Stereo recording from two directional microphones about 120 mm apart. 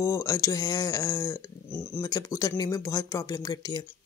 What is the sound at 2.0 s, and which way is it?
Speech, 30° left (ahead or behind).